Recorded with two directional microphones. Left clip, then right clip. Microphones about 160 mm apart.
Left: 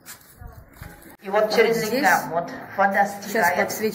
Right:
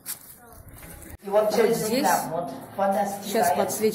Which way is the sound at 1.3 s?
40° left (ahead or behind).